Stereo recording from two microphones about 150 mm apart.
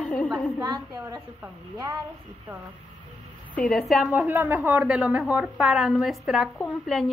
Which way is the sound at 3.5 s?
10° left (ahead or behind).